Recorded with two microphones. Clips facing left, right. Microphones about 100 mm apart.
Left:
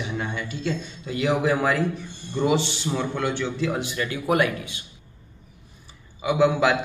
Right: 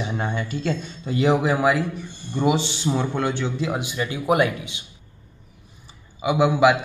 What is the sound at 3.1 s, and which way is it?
Speech, 25° right (ahead or behind).